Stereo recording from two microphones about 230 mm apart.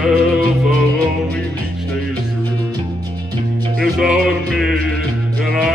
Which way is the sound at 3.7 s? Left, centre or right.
Centre.